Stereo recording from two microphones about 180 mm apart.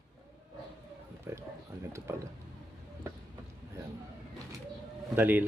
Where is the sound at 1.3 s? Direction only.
15° right (ahead or behind).